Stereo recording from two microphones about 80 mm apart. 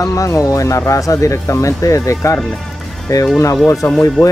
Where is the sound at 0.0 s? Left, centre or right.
Left.